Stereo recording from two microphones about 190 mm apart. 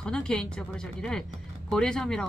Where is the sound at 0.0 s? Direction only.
5° left (ahead or behind).